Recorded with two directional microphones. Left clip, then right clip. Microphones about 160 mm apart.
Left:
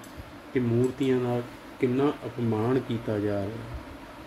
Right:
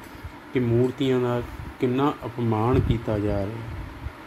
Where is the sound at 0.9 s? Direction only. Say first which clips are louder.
Right 3 dB; 35° right (ahead or behind).